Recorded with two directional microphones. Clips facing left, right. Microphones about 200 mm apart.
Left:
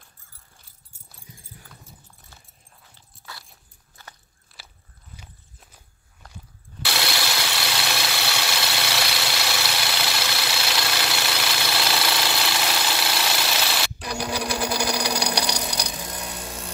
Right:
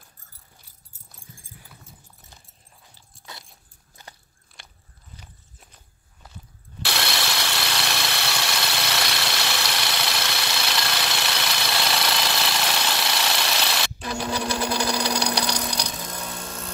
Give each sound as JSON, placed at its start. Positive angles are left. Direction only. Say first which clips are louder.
{"t": 3.3, "sound": "vehicle", "louder": "even", "side_deg": -20}
{"t": 4.0, "sound": "biting", "louder": "right 1 dB", "side_deg": -15}
{"t": 4.5, "sound": "biting", "louder": "even", "side_deg": 0}
{"t": 6.2, "sound": "walk", "louder": "even", "side_deg": -5}
{"t": 6.8, "sound": "engine", "louder": "even", "side_deg": 0}